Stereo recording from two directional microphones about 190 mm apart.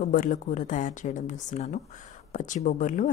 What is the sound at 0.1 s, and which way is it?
Speech, 45° left (ahead or behind).